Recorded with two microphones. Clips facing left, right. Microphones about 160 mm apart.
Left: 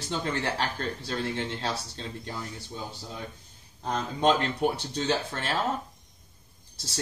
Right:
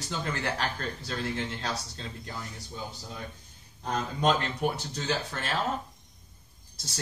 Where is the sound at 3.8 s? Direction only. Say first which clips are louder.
Left 2 dB; 30° left (ahead or behind).